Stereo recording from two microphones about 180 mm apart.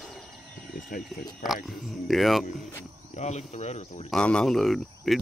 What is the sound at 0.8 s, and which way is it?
Speech, 50° left (ahead or behind).